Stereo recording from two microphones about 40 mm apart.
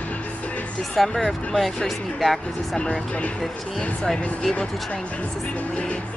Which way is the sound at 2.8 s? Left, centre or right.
Left.